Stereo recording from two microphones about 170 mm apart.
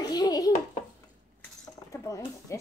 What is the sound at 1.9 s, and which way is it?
Speech, 20° left (ahead or behind).